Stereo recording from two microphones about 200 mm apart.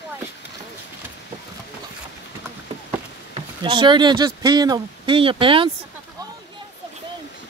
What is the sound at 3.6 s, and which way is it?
Speech, 25° right (ahead or behind).